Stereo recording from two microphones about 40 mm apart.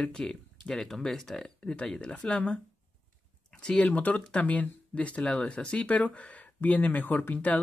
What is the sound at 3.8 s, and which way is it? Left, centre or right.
Speech, left.